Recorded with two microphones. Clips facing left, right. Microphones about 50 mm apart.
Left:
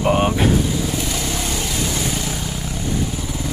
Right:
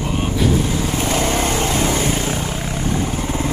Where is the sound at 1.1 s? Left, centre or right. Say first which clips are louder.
Right 6 dB; right.